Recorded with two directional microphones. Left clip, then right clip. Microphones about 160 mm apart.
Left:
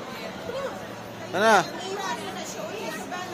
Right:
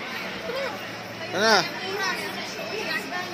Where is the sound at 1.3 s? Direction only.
5° left (ahead or behind).